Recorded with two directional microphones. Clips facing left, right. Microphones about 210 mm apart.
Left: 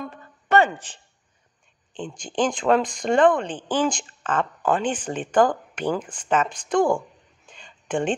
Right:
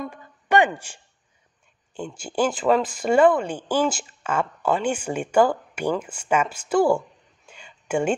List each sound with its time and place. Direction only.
0.1 s speech: 15° right (ahead or behind)